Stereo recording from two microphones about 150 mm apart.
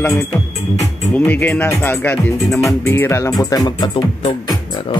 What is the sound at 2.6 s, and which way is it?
Music, 15° left (ahead or behind).